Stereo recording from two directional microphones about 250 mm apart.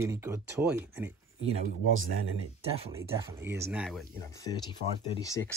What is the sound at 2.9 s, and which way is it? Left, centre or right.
Speech, centre.